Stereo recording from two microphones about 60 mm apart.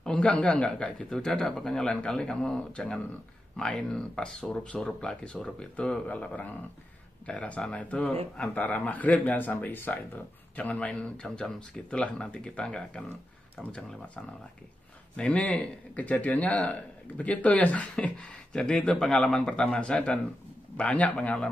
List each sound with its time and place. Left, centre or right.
0.0 s a sound: centre
0.3 s speech: left
1.1 s speech: centre
4.8 s speech: centre
11.0 s speech: centre
12.0 s speech: left
15.1 s speech: centre
18.9 s speech: centre; by 21.4 s left